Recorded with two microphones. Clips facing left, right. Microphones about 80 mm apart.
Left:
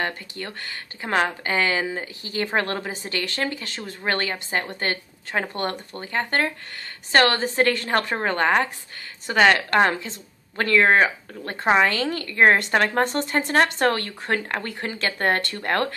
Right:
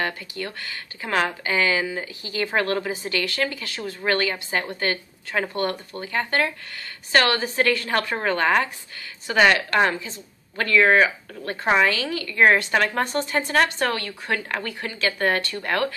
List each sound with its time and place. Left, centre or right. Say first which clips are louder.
1.0 s a woman's voice: left 1 dB; left